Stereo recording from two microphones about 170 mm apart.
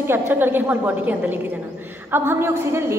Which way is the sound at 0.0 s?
10° right (ahead or behind).